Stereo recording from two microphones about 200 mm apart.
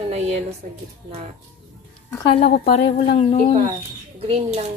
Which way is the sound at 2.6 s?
30° left (ahead or behind).